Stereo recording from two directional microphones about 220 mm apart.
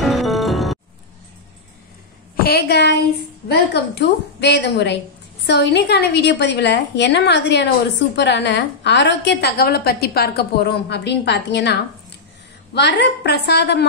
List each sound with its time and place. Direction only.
0.0 s music: centre (ahead or behind)
2.3 s a woman's voice: 45° left (ahead or behind)